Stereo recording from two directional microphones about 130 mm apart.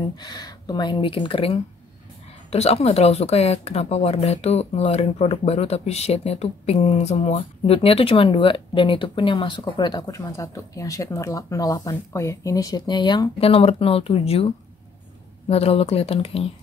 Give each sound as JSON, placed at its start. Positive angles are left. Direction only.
{"t": 0.2, "sound": "speech", "side_deg": 30}
{"t": 13.4, "sound": "speech", "side_deg": 50}